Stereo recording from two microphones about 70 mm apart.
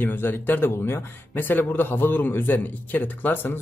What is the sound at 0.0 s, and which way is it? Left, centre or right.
A man's voice, left.